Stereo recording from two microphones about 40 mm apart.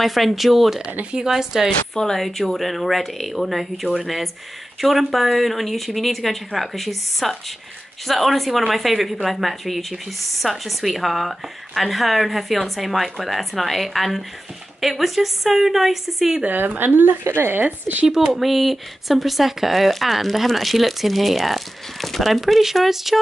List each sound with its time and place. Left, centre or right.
0.0 s a woman's voice: centre
2.1 s a woman's voice: centre
16.4 s speech: right
17.6 s speech: right
18.3 s a woman's voice: centre